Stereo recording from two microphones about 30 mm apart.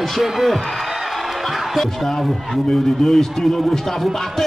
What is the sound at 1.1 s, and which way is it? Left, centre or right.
Music, centre.